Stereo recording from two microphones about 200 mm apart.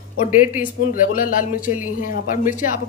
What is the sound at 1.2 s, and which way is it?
Speech, 40° left (ahead or behind).